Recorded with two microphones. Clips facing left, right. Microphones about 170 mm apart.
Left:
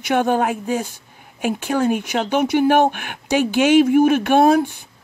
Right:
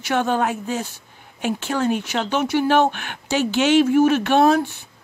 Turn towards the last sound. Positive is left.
turn(degrees=10)  # may be behind; listen again after turning